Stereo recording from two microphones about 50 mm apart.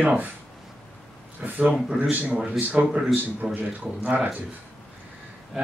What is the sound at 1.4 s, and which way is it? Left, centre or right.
Speech, right.